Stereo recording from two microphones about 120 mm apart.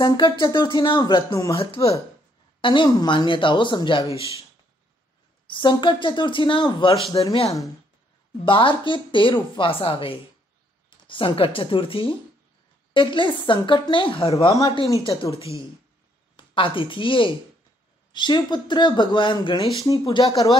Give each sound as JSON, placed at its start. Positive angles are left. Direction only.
{"t": 0.0, "sound": "speech", "side_deg": 40}
{"t": 2.6, "sound": "speech", "side_deg": 40}
{"t": 5.5, "sound": "a woman's voice", "side_deg": 40}
{"t": 7.1, "sound": "speech", "side_deg": 30}
{"t": 8.5, "sound": "a woman's voice", "side_deg": 45}
{"t": 14.3, "sound": "speech", "side_deg": 30}
{"t": 16.3, "sound": "speech", "side_deg": 45}
{"t": 19.8, "sound": "speech", "side_deg": 30}